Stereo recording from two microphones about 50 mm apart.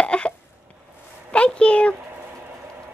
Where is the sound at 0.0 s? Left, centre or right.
Left.